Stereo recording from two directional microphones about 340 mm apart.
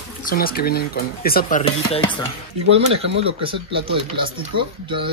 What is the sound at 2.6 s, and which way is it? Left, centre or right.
Speech, right.